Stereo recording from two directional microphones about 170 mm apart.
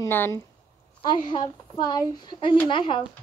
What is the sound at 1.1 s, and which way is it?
Speech, 25° left (ahead or behind).